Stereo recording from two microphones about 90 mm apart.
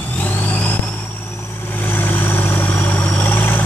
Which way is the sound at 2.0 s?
20° left (ahead or behind).